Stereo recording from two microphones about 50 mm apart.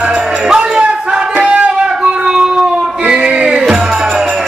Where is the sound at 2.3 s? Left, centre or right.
Centre.